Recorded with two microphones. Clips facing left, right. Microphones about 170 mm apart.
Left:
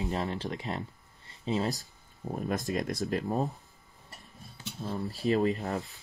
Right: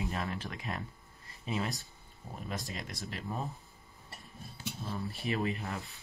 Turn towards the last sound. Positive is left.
turn(degrees=35)  # may be behind; listen again after turning